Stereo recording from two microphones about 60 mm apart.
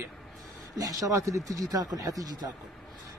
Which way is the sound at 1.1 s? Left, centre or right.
Right.